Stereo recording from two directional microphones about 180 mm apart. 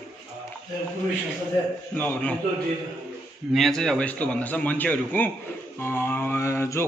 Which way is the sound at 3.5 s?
Centre (ahead or behind).